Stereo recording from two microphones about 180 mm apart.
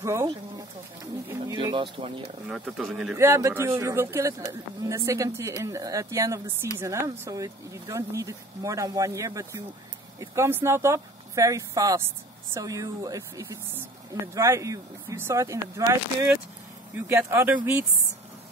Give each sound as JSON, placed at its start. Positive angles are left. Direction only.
{"t": 0.0, "sound": "speech", "side_deg": -15}
{"t": 2.4, "sound": "speech", "side_deg": 0}
{"t": 3.2, "sound": "speech", "side_deg": -15}